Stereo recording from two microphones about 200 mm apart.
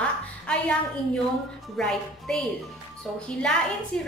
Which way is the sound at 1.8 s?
5° left (ahead or behind).